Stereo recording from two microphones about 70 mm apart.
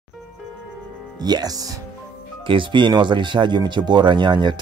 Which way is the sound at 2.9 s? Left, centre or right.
Right.